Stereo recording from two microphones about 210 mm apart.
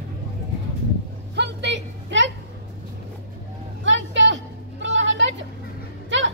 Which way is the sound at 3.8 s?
60° right (ahead or behind).